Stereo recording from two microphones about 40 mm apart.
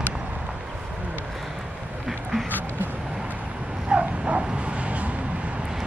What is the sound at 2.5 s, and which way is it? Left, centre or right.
Vehicle, left.